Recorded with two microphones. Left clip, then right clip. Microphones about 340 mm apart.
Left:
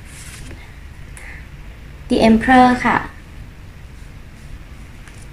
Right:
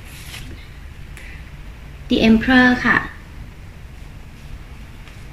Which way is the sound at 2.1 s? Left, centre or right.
Centre.